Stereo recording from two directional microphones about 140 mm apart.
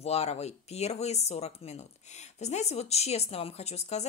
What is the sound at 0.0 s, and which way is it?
Speech, 50° left (ahead or behind).